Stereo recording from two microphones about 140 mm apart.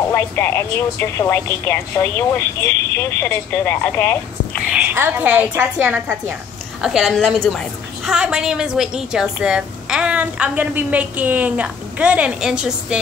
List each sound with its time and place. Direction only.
0.1 s a woman's voice: 15° left (ahead or behind)
4.7 s a woman's voice: 15° right (ahead or behind)
6.8 s a woman's voice: centre (ahead or behind)